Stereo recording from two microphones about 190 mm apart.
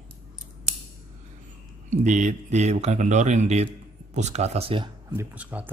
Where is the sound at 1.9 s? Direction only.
40° right (ahead or behind).